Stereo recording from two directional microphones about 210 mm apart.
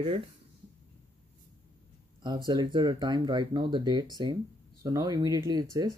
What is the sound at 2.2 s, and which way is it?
Speech, 20° right (ahead or behind).